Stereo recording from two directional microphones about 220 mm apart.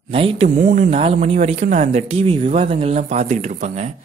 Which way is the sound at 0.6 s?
35° right (ahead or behind).